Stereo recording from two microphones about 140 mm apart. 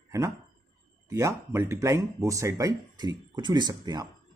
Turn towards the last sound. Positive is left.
turn(degrees=-30)  # may be behind; listen again after turning